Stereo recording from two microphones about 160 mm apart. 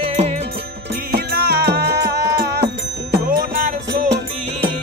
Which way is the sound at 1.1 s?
80° right.